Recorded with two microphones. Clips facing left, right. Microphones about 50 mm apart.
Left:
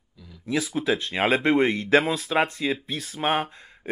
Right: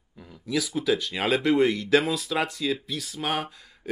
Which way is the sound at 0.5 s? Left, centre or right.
Left.